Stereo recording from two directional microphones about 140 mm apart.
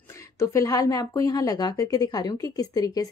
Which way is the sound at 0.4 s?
25° left (ahead or behind).